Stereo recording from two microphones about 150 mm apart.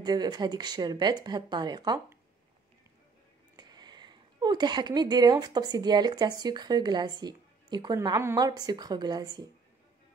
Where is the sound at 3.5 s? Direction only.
30° right (ahead or behind).